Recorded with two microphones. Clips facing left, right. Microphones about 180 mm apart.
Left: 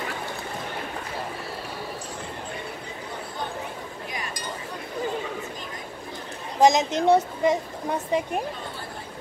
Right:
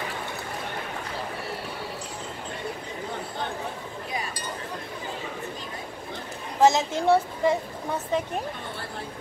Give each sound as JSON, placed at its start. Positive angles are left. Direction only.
{"t": 6.6, "sound": "speech", "side_deg": 15}